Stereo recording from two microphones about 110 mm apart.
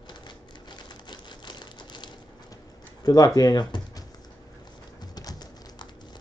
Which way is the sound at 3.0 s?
35° left (ahead or behind).